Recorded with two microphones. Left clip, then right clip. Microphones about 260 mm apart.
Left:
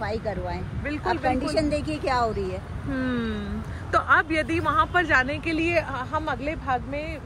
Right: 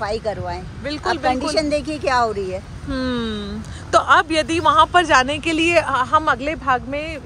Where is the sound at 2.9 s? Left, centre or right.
Centre.